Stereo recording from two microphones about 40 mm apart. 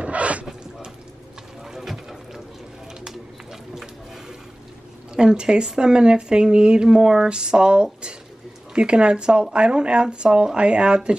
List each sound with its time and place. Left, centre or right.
0.0 s a sound: right
1.6 s boat: centre
5.1 s speech: centre